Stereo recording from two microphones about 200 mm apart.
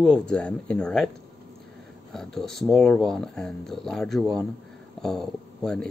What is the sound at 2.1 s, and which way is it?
Speech, centre (ahead or behind).